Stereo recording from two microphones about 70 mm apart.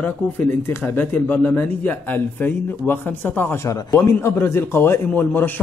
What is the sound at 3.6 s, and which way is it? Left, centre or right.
A man's voice, left.